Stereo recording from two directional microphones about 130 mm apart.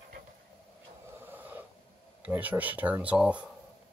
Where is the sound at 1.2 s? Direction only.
15° right (ahead or behind).